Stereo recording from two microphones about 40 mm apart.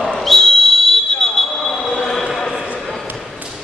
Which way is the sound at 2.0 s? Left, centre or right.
Centre.